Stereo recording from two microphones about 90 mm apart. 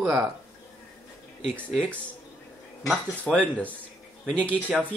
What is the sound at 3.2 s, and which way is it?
Speech, 15° left (ahead or behind).